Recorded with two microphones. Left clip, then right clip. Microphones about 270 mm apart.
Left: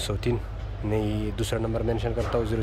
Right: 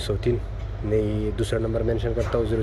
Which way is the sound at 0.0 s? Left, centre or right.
Centre.